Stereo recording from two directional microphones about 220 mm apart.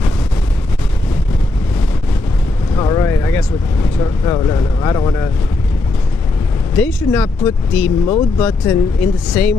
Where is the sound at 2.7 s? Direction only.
15° left (ahead or behind).